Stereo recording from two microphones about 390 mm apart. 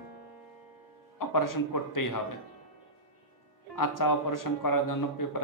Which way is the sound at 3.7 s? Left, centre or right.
Left.